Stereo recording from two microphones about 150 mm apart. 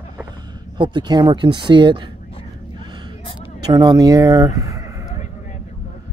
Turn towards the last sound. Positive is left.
turn(degrees=-20)  # may be behind; listen again after turning